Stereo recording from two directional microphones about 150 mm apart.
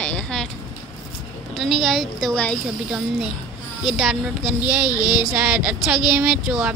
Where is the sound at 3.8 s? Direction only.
5° right (ahead or behind).